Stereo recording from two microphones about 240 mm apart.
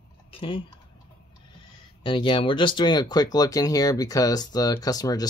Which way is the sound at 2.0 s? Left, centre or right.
Left.